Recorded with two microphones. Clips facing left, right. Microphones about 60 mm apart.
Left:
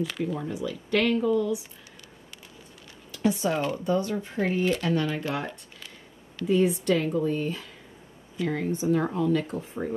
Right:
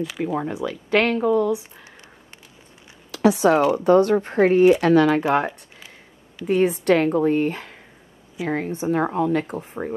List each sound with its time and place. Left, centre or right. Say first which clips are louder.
0.2 s speech: right 5 dB; right
3.1 s speech: right 9 dB; right
4.8 s speech: right 11 dB; right
6.4 s speech: right 4 dB; right